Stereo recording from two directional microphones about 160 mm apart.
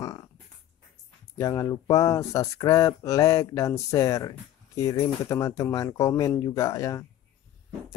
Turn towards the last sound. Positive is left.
turn(degrees=20)  # may be behind; listen again after turning